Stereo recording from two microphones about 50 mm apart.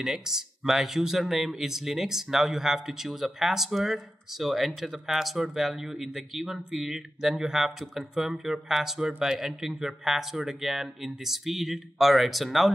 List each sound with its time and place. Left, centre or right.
0.0 s speech: centre